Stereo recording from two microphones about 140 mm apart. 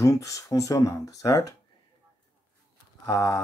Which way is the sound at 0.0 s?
25° left (ahead or behind).